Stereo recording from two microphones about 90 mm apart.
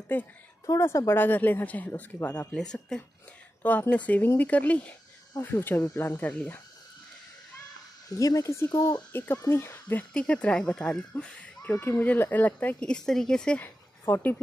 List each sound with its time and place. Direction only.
0.7 s speech: 30° left (ahead or behind); by 3.0 s 5° left (ahead or behind)
3.9 s speech: 15° left (ahead or behind)
8.2 s speech: 40° left (ahead or behind)
9.1 s speech: 20° left (ahead or behind)
10.1 s speech: 15° left (ahead or behind)
13.6 s speech: 20° left (ahead or behind)